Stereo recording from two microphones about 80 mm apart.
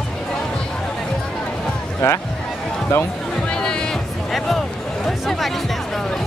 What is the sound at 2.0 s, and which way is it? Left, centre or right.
Speech, left.